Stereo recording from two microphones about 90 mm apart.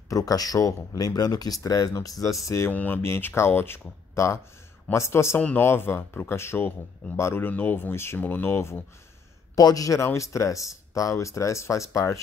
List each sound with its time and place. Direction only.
0.1 s speech: 40° left (ahead or behind)
2.7 s speech: 20° left (ahead or behind)
5.4 s speech: 15° left (ahead or behind)
5.7 s speech: 25° left (ahead or behind)
9.6 s speech: 45° left (ahead or behind)